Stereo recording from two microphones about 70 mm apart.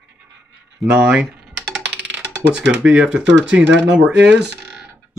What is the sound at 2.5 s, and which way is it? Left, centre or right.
Speech, centre.